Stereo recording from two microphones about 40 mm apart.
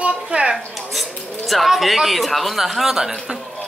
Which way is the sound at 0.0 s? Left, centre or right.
Right.